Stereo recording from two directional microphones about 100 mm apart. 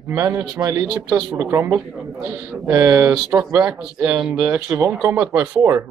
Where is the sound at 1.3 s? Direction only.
25° right (ahead or behind).